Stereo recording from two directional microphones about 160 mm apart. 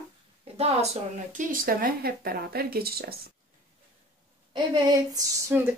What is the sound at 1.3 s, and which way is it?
Speech, 55° right (ahead or behind).